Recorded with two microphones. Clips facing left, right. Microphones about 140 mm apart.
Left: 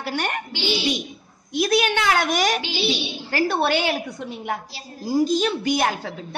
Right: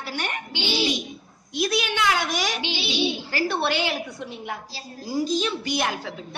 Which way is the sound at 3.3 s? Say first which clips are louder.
Left 7 dB; 50° left (ahead or behind).